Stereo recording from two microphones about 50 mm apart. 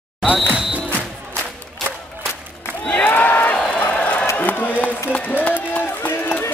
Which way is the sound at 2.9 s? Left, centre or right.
Left.